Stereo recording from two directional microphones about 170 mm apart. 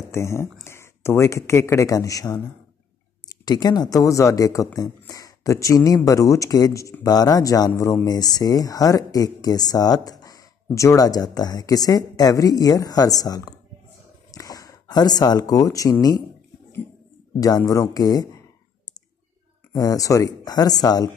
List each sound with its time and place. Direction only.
0.1 s speech: 15° left (ahead or behind)
17.4 s speech: 20° left (ahead or behind)
19.7 s speech: 20° left (ahead or behind)